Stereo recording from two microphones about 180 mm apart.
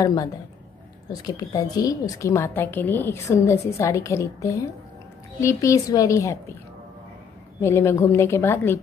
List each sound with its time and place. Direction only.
0.0 s a woman's voice: 20° left (ahead or behind)
7.6 s a woman's voice: 15° left (ahead or behind)